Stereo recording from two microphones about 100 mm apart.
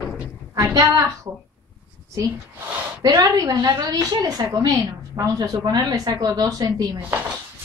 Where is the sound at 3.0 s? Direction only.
35° right (ahead or behind).